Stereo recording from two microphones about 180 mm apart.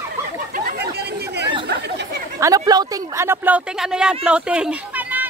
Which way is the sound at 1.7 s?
65° right (ahead or behind).